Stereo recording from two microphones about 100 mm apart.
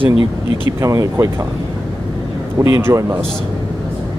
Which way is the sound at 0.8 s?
30° right (ahead or behind).